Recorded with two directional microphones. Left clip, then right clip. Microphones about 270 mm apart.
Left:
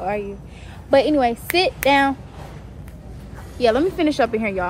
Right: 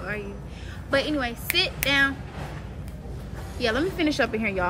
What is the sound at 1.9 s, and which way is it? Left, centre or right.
Speech, centre.